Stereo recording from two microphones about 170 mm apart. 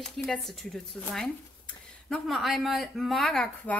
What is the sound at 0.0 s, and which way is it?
Speech, centre (ahead or behind).